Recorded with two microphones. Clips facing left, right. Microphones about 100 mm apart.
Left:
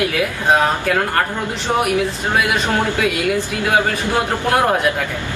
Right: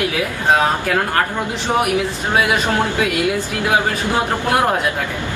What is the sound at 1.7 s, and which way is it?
Speech, 15° right (ahead or behind).